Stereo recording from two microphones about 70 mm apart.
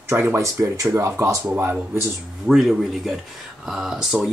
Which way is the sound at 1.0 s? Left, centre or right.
Right.